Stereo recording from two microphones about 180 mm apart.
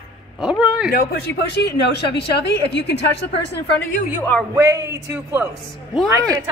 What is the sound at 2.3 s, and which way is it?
Speech, 70° left (ahead or behind).